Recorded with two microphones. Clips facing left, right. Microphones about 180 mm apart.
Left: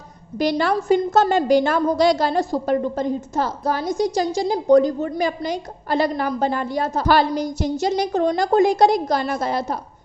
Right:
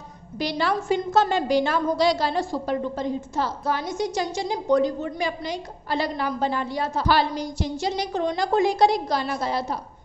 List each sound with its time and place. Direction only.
0.4 s a woman's voice: 45° left (ahead or behind)